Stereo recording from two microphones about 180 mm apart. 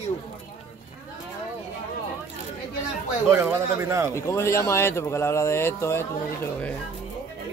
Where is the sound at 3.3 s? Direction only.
15° right (ahead or behind).